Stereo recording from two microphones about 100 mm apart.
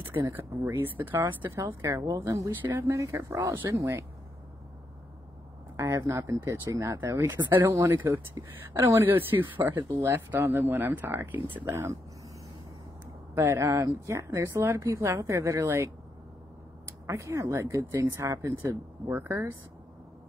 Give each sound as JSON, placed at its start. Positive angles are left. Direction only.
{"t": 0.7, "sound": "speech", "side_deg": -20}
{"t": 1.4, "sound": "speech", "side_deg": -35}
{"t": 5.8, "sound": "speech", "side_deg": -30}
{"t": 13.3, "sound": "speech", "side_deg": -25}
{"t": 17.0, "sound": "speech", "side_deg": -30}